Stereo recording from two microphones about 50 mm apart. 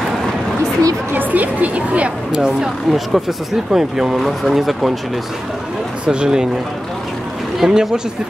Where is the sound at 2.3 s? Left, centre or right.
Centre.